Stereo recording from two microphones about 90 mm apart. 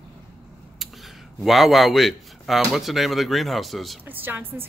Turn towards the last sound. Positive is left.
turn(degrees=-20)  # may be behind; listen again after turning